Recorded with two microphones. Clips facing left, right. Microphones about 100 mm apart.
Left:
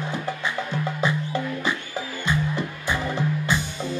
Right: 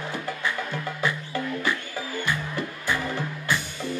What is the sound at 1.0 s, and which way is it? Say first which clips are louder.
Music: left 3 dB; 20° left (ahead or behind).